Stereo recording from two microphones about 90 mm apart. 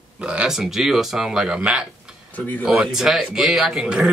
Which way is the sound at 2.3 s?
20° left (ahead or behind).